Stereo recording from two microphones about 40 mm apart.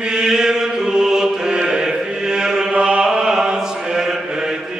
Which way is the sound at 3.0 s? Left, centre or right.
Centre.